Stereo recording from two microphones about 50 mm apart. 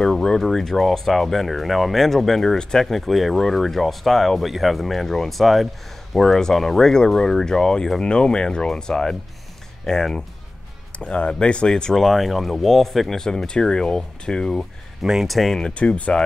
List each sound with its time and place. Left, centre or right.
0.4 s speech: centre
11.9 s speech: centre
15.2 s speech: centre
15.6 s speech: left